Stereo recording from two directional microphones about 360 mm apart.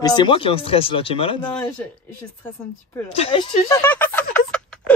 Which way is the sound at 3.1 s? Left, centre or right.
Centre.